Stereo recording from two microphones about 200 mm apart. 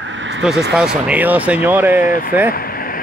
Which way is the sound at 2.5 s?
45° left (ahead or behind).